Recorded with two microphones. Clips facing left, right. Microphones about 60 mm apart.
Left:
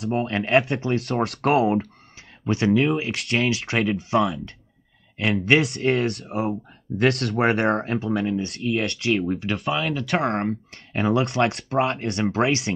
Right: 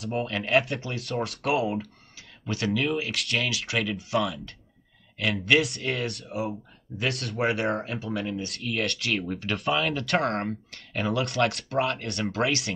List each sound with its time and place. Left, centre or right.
0.1 s speech: left
0.9 s speech: left
2.4 s speech: left
5.6 s speech: left
7.9 s speech: left; by 9.6 s centre
9.6 s speech: centre
10.7 s speech: left